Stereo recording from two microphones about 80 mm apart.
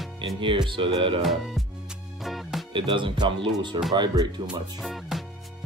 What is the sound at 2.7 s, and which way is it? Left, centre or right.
Speech, right.